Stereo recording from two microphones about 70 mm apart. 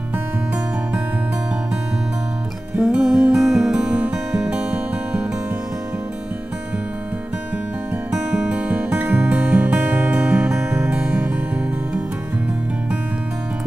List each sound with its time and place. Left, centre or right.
2.8 s music: centre
8.1 s music: centre